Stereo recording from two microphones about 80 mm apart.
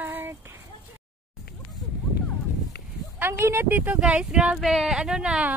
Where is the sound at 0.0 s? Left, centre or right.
Right.